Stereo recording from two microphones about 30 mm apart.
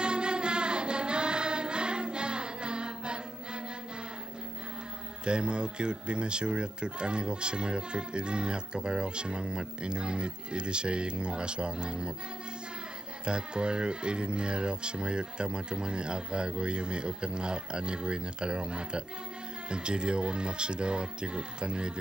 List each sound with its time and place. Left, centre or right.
0.0 s choir: right
5.2 s speech: right
13.2 s speech: right